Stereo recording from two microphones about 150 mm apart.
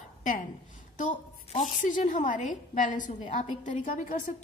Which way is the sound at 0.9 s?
60° left (ahead or behind).